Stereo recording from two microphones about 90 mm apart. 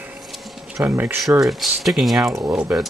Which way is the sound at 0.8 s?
20° right (ahead or behind).